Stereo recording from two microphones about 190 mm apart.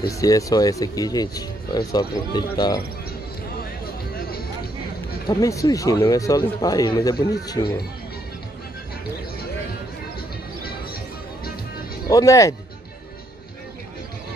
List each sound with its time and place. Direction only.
0.1 s speech: 15° left (ahead or behind)
5.3 s speech: 15° left (ahead or behind)
12.1 s speech: 15° left (ahead or behind)